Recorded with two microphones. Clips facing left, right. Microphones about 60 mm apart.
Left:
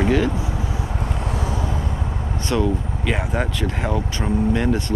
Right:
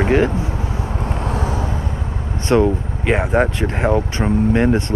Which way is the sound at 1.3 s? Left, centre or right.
Right.